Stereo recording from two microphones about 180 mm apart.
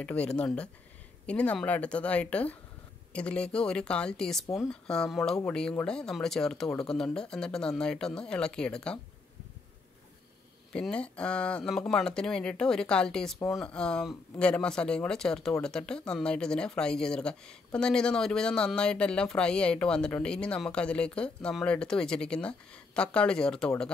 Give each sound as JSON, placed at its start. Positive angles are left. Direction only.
{"t": 0.0, "sound": "a woman's voice", "side_deg": 5}
{"t": 10.7, "sound": "speech", "side_deg": 5}